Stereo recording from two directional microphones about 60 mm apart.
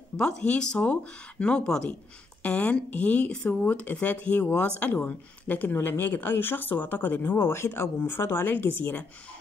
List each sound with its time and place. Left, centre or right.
0.2 s a woman's voice: centre; by 9.0 s left